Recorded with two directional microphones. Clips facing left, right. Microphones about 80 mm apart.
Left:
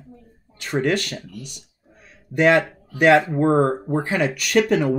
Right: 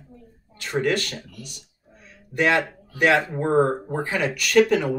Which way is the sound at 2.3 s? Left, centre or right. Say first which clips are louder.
Left 4 dB; centre.